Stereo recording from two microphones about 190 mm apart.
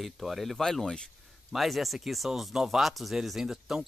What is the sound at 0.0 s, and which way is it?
Speech, centre (ahead or behind).